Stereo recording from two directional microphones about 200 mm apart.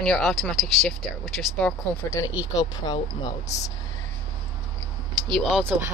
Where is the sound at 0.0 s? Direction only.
5° left (ahead or behind); by 3.0 s 20° left (ahead or behind).